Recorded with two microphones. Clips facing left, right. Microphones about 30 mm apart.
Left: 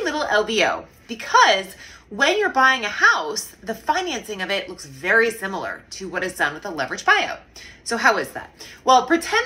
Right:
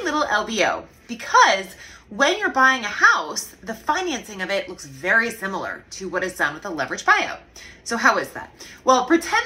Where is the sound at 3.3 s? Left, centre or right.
Left.